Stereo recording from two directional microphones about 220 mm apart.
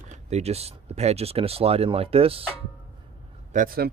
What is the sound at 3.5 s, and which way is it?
Speech, 40° right (ahead or behind).